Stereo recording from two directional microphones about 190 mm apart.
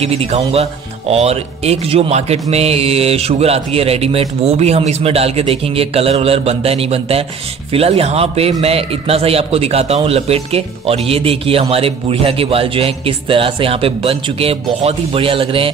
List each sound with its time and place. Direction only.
0.0 s a man's voice: 35° right (ahead or behind)